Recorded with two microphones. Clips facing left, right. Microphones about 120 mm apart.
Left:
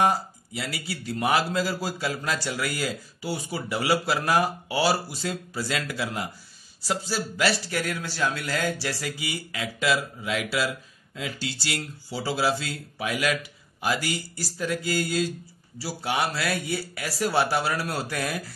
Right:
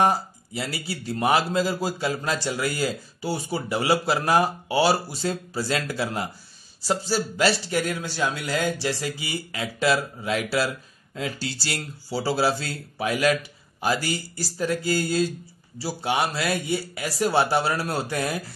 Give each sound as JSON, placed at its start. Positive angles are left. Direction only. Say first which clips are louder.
{"t": 0.0, "sound": "a man's voice", "louder": "right 2 dB", "side_deg": -30}